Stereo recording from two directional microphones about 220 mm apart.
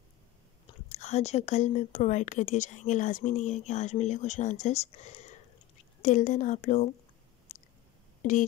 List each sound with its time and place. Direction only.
0.7 s speech: 30° left (ahead or behind)
7.5 s a sound: 35° left (ahead or behind)
8.2 s speech: 35° left (ahead or behind)